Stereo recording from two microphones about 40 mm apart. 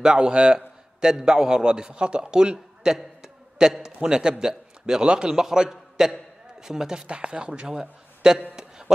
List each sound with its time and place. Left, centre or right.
0.0 s a man's voice: right
5.3 s a man's voice: centre
8.5 s a sound: centre